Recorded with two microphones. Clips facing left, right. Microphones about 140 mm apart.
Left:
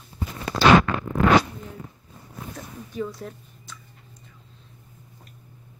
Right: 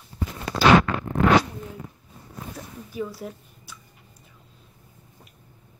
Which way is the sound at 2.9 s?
5° right (ahead or behind).